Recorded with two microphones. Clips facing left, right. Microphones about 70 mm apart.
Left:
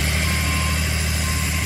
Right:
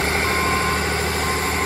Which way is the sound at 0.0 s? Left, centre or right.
Right.